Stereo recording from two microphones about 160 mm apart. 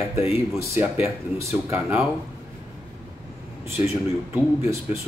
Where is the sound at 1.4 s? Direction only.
15° right (ahead or behind).